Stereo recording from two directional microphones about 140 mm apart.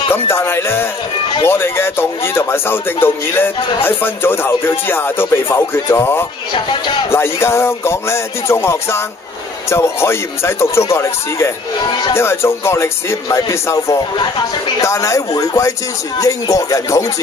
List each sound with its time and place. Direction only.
0.1 s speech: 15° left (ahead or behind)